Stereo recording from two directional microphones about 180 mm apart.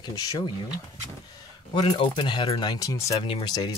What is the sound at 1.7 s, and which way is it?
Speech, 30° left (ahead or behind).